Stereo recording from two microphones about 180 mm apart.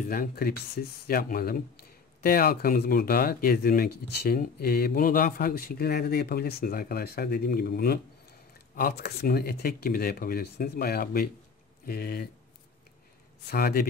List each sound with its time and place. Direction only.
0.0 s speech: 50° left (ahead or behind)
13.5 s speech: 55° left (ahead or behind)